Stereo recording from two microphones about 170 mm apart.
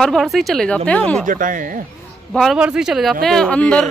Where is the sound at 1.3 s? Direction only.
50° right (ahead or behind).